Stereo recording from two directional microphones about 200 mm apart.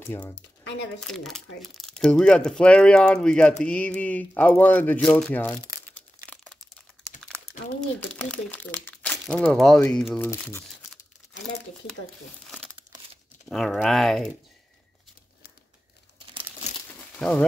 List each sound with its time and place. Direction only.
0.7 s speech: 60° left (ahead or behind)
1.0 s speech: centre (ahead or behind)
5.9 s crumpling: 5° left (ahead or behind)
8.0 s speech: 5° left (ahead or behind)
12.4 s crumpling: centre (ahead or behind)
13.5 s speech: centre (ahead or behind)
17.2 s speech: 5° left (ahead or behind)